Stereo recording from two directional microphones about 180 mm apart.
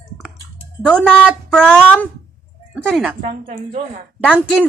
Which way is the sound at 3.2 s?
30° right (ahead or behind).